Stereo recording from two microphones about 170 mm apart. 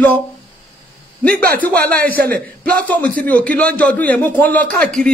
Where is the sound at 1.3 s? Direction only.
65° right (ahead or behind).